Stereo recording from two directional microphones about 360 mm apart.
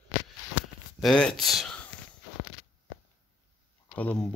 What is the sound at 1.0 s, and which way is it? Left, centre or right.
Speech, centre.